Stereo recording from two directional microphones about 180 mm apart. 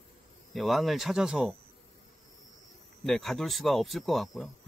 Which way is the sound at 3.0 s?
Centre (ahead or behind).